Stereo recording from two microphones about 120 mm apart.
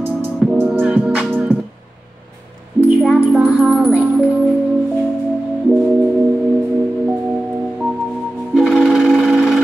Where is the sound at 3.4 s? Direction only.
10° right (ahead or behind).